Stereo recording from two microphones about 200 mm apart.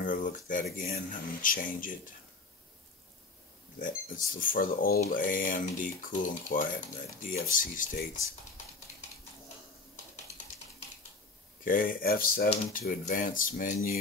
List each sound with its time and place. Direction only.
0.0 s a sound: 40° left (ahead or behind)
0.7 s speech: 45° left (ahead or behind)
3.8 s speech: 45° left (ahead or behind)
11.6 s speech: 45° left (ahead or behind)